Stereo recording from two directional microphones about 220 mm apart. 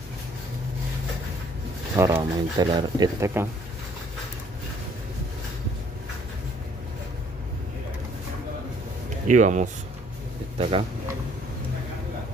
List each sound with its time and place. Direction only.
2.0 s speech: 15° right (ahead or behind)
9.3 s speech: 35° right (ahead or behind)